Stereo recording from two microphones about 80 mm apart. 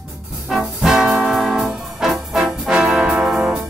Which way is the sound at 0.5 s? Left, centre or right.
Centre.